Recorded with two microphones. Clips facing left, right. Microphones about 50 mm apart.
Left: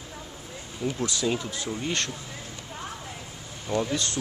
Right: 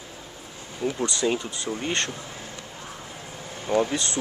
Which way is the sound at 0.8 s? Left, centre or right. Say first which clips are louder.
Right 3 dB; centre.